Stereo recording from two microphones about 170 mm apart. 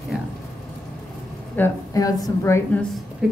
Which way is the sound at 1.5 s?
15° left (ahead or behind).